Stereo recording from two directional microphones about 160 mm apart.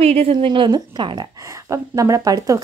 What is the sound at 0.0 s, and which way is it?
A woman's voice, 40° right (ahead or behind).